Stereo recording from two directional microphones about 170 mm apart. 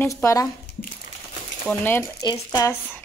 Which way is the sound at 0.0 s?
15° left (ahead or behind).